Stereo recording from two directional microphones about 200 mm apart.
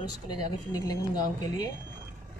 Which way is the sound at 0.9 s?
20° left (ahead or behind).